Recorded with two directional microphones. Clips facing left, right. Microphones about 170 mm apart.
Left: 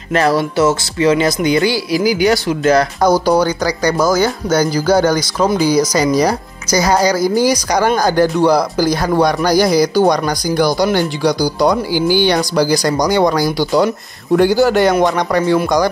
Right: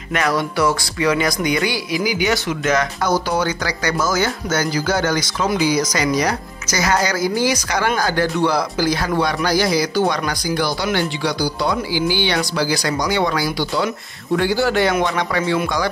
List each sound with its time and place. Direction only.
0.1 s speech: 30° left (ahead or behind)